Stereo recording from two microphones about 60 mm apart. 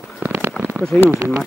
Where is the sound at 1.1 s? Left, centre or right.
Right.